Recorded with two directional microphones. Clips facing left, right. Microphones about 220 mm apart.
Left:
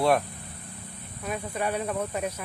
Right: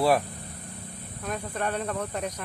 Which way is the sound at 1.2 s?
10° left (ahead or behind).